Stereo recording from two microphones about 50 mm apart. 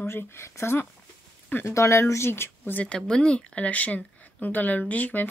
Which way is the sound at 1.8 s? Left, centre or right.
Left.